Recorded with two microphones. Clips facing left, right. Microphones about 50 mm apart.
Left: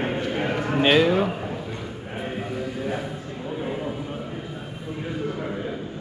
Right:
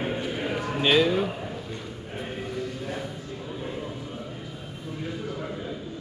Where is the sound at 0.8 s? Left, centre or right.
Centre.